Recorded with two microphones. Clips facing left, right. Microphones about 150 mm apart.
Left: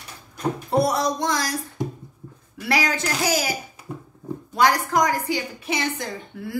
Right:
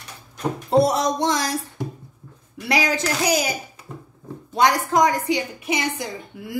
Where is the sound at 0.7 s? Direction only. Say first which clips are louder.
Right 4 dB; 25° right (ahead or behind).